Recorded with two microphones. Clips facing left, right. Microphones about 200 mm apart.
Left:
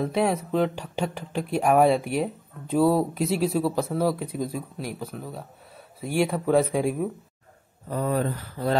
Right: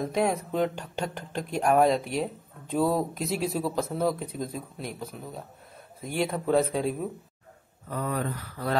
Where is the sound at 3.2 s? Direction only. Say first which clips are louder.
Left 5 dB; centre (ahead or behind).